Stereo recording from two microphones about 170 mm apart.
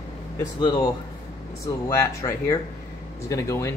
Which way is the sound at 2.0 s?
20° left (ahead or behind).